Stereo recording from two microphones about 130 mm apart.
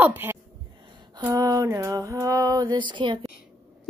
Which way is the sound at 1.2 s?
25° right (ahead or behind).